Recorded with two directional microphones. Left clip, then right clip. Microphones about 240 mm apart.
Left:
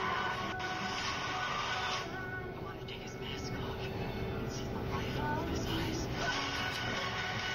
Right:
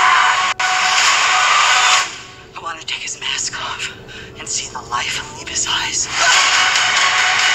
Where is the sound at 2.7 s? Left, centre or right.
Right.